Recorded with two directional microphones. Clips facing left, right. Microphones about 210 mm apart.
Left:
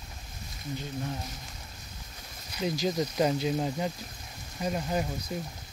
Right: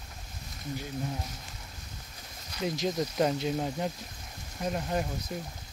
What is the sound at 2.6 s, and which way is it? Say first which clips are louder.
Speech: left 1 dB; centre (ahead or behind).